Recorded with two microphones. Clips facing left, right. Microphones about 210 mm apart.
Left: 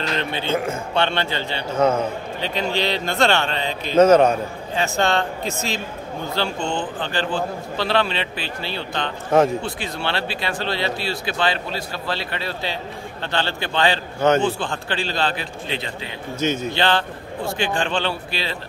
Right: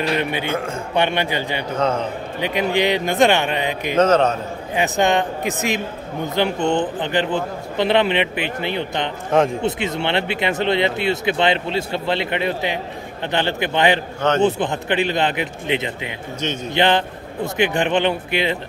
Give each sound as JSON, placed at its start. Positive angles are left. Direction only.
{"t": 0.1, "sound": "a man's voice", "side_deg": -15}
{"t": 1.8, "sound": "speech", "side_deg": 10}
{"t": 2.4, "sound": "a man's voice", "side_deg": -15}
{"t": 4.0, "sound": "speech", "side_deg": 10}
{"t": 4.7, "sound": "a man's voice", "side_deg": -15}
{"t": 16.3, "sound": "speech", "side_deg": 10}
{"t": 16.7, "sound": "speech", "side_deg": -20}